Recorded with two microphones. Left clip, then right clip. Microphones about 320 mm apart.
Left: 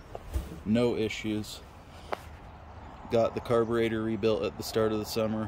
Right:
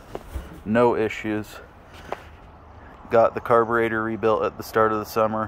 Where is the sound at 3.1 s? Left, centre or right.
Centre.